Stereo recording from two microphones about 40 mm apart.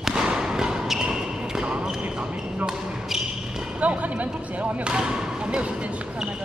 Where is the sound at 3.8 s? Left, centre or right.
Right.